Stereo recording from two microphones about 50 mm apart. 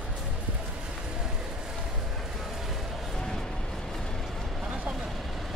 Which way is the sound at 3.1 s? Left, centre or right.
Centre.